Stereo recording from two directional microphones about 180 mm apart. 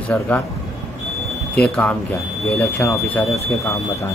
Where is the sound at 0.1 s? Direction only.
5° left (ahead or behind).